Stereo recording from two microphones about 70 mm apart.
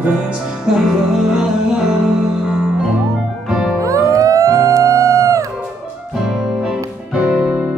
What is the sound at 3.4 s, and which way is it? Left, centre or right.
Music, centre.